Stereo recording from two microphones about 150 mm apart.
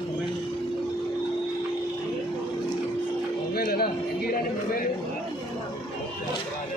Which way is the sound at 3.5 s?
90° left.